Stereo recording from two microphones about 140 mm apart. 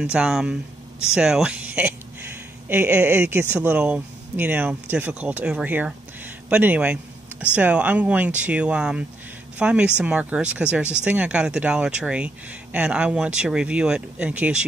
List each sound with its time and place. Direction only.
0.0 s speech: 5° right (ahead or behind)